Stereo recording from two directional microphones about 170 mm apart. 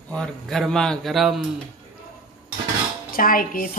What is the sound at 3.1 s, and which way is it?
Speech, 55° left (ahead or behind).